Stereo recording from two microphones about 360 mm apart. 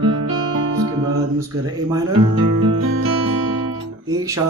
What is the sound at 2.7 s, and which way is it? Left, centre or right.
Music, right.